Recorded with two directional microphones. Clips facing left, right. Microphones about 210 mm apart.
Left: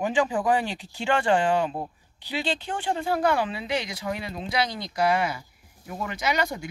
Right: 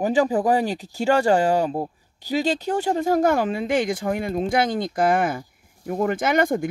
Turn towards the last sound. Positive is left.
turn(degrees=-50)  # may be behind; listen again after turning